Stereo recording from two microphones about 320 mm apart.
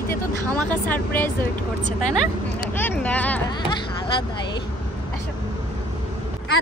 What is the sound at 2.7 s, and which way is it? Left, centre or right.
A man's voice, centre.